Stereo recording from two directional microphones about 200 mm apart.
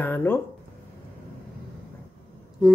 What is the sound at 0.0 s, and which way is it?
Speech, 10° left (ahead or behind).